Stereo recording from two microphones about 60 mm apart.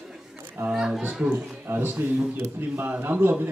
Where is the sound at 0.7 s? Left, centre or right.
Centre.